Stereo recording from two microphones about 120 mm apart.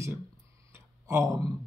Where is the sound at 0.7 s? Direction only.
25° right (ahead or behind).